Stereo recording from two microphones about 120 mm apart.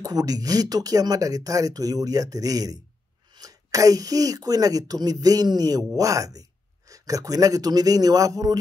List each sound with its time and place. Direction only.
0.0 s speech: 30° right (ahead or behind)